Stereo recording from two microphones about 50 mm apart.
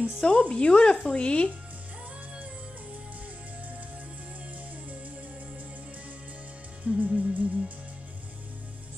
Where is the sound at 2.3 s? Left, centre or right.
Right.